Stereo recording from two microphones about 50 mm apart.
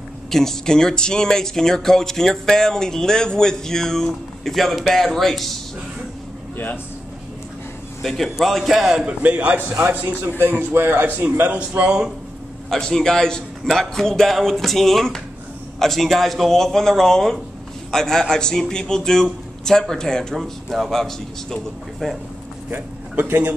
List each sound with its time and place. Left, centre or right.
0.3 s speech: centre
8.0 s a man's voice: centre
9.0 s a man's voice: right
9.8 s a man's voice: right
11.8 s speech: centre
12.6 s speech: centre
20.3 s a man's voice: centre
22.7 s a man's voice: right